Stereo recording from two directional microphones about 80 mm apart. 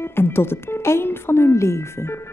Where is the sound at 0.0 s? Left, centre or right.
Left.